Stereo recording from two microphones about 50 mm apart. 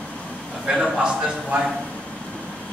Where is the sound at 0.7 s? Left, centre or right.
Centre.